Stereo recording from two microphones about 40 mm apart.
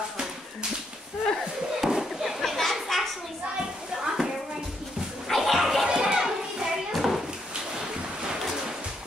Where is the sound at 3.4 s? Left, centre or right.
Right.